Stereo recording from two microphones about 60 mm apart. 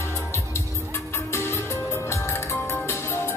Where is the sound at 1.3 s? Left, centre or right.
Left.